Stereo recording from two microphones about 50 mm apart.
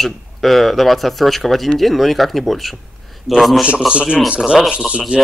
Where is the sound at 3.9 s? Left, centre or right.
Right.